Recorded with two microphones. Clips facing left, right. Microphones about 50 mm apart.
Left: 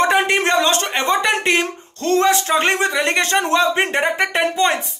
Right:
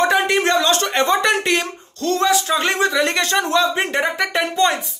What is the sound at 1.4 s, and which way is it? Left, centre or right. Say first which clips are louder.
Speech: left 2 dB; left.